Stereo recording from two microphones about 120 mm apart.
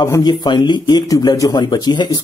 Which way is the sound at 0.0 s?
30° left (ahead or behind).